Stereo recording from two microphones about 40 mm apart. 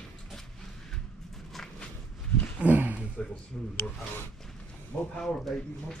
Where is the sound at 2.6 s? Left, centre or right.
Right.